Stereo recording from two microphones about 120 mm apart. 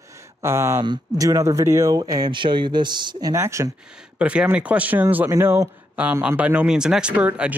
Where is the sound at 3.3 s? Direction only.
25° right (ahead or behind).